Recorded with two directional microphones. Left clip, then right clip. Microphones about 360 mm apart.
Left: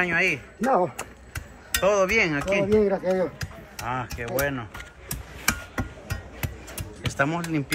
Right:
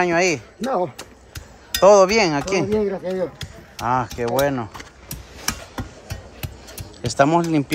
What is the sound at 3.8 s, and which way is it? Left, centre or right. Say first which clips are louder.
Speech: right 9 dB; centre.